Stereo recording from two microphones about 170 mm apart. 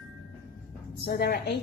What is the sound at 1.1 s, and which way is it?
Speech, 65° left (ahead or behind).